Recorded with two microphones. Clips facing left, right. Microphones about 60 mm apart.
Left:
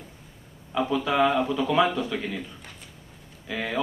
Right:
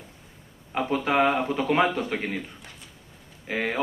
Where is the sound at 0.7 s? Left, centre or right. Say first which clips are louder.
Even; right.